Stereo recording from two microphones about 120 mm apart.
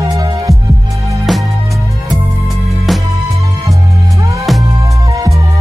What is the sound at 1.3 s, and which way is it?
Music, centre (ahead or behind).